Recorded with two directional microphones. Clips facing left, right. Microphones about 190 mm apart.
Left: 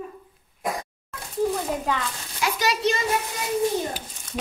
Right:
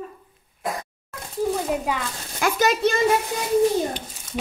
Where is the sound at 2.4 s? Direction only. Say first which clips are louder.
Right 4 dB; 50° right (ahead or behind).